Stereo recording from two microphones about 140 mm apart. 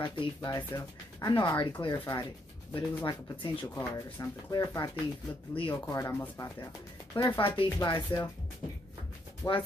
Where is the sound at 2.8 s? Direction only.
20° left (ahead or behind).